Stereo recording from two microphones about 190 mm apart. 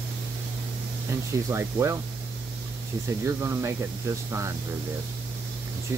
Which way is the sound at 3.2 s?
15° right (ahead or behind).